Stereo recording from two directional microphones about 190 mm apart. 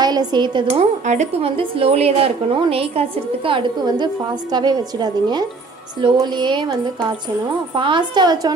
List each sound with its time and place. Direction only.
0.0 s speech: 20° right (ahead or behind)
7.7 s speech: 25° right (ahead or behind)